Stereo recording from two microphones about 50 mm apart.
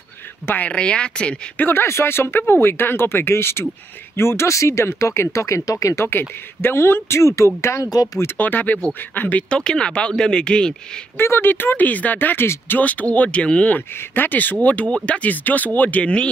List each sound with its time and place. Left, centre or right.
0.6 s speech: left
1.7 s speech: left
6.0 s speech: left
8.4 s speech: left
9.5 s speech: centre
11.1 s speech: left
13.7 s speech: left